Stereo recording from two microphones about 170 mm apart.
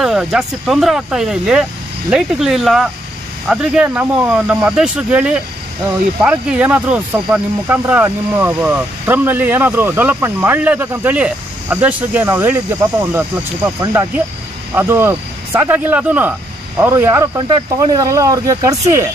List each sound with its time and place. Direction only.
0.0 s speech: 5° right (ahead or behind)
17.4 s speech: 25° right (ahead or behind)